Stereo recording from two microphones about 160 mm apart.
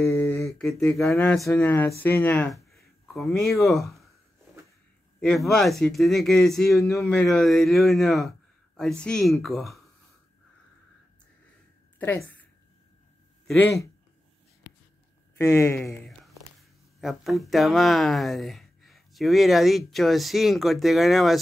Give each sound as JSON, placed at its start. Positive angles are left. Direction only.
{"t": 0.0, "sound": "a sound", "side_deg": 15}
{"t": 1.1, "sound": "speech", "side_deg": 5}
{"t": 3.3, "sound": "speech", "side_deg": 20}
{"t": 5.2, "sound": "speech", "side_deg": 0}
{"t": 15.3, "sound": "speech", "side_deg": 20}
{"t": 16.0, "sound": "a sound", "side_deg": 5}
{"t": 17.0, "sound": "speech", "side_deg": 0}